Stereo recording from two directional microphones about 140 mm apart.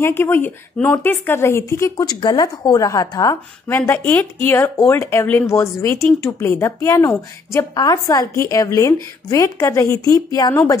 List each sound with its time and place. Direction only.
0.0 s a woman's voice: 15° left (ahead or behind)